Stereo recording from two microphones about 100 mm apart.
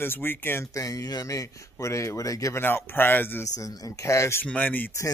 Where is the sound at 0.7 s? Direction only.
35° left (ahead or behind).